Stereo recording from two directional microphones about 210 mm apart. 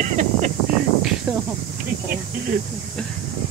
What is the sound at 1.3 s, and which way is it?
Snake, 10° right (ahead or behind).